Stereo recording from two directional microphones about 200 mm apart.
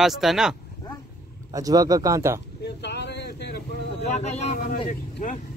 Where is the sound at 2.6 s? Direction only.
60° left (ahead or behind).